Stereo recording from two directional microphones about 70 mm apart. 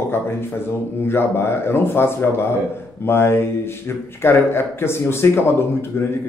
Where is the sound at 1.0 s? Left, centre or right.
Left.